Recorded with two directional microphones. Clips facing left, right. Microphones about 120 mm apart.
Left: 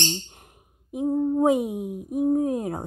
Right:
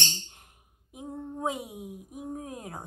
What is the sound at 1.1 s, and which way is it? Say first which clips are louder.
Speech: left 12 dB; 30° left (ahead or behind).